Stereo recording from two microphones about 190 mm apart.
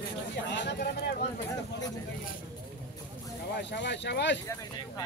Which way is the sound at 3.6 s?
65° left (ahead or behind).